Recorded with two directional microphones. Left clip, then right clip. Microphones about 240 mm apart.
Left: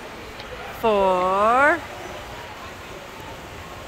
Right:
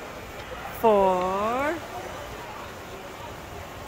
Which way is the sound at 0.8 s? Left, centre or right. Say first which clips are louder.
Left 2 dB; centre.